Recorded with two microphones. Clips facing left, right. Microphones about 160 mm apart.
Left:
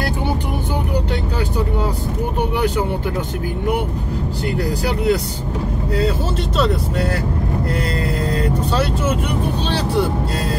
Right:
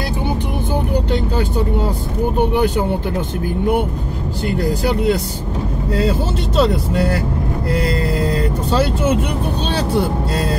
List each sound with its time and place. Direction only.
4.8 s speech: 25° right (ahead or behind)